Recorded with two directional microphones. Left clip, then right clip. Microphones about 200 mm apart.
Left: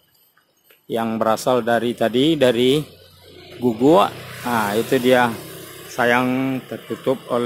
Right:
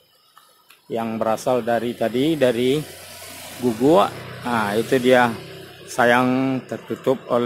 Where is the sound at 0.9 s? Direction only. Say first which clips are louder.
Left 3 dB; 20° left (ahead or behind).